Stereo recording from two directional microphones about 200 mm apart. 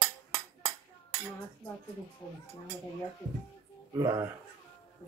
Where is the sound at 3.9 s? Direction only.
15° right (ahead or behind).